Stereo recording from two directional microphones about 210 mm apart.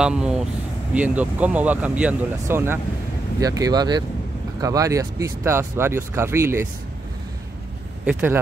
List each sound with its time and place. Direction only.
0.0 s speech: 5° right (ahead or behind)
8.0 s speech: 10° right (ahead or behind)